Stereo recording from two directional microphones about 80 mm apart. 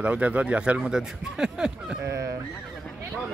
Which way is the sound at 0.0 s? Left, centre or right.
Centre.